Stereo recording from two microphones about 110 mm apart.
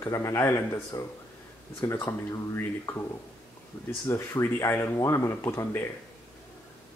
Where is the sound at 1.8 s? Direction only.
20° left (ahead or behind).